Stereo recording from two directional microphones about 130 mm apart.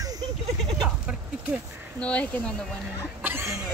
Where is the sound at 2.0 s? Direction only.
10° left (ahead or behind).